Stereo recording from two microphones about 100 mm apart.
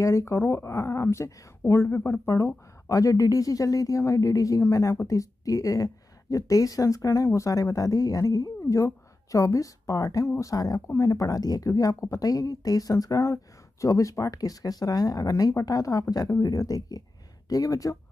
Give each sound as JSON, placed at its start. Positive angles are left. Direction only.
{"t": 0.0, "sound": "speech", "side_deg": 30}